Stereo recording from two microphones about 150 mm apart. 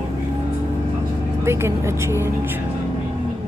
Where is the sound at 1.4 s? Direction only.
15° right (ahead or behind).